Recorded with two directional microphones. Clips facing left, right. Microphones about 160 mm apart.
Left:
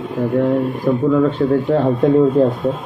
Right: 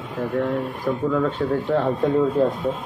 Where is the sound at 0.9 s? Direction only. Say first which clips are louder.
Left 7 dB; 20° left (ahead or behind).